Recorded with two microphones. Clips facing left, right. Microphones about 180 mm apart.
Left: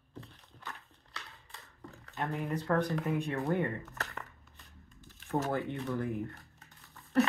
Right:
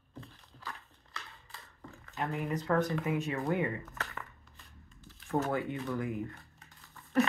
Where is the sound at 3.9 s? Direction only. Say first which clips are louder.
Even; 40° left (ahead or behind).